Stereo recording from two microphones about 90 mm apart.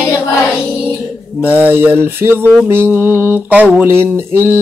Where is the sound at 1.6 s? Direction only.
20° right (ahead or behind).